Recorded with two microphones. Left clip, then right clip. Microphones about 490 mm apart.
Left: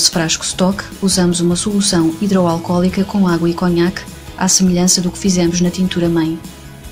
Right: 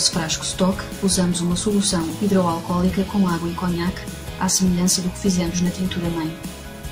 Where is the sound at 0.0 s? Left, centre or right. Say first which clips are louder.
Left 7 dB; centre.